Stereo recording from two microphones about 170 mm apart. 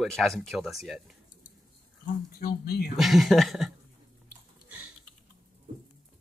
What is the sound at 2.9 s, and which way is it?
Speech, centre (ahead or behind).